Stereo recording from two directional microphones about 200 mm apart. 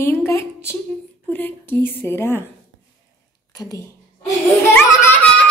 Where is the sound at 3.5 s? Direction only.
15° left (ahead or behind).